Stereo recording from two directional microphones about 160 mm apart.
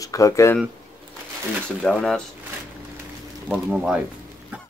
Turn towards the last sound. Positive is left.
turn(degrees=-5)  # may be behind; listen again after turning